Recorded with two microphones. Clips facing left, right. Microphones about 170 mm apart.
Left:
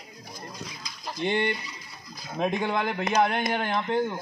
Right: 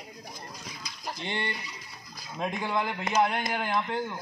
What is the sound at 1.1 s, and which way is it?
A man's voice, 20° left (ahead or behind).